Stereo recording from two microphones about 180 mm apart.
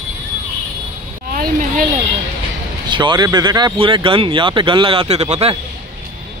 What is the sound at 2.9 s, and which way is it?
Speech, 25° right (ahead or behind).